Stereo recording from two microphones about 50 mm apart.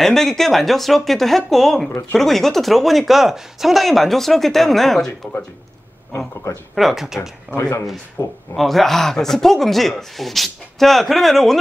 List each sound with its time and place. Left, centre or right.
0.0 s speech: centre
5.2 s speech: left
6.7 s speech: centre
8.2 s speech: left
8.5 s speech: centre